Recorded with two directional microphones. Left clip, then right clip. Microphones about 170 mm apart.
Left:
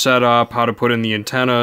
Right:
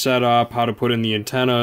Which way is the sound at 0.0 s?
30° left (ahead or behind).